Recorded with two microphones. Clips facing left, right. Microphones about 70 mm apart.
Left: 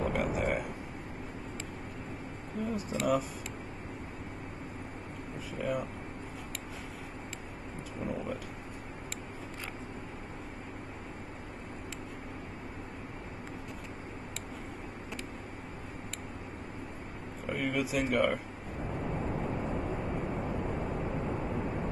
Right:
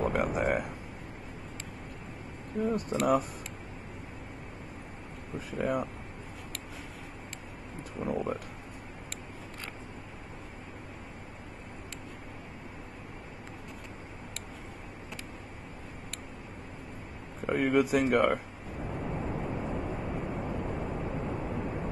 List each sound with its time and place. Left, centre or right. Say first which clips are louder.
0.0 s a sound: right 2 dB; centre
2.6 s speech: right 4 dB; centre
5.5 s speech: right 3 dB; centre
8.0 s speech: right 3 dB; centre
17.5 s speech: right 6 dB; right
18.2 s a sound: right 2 dB; centre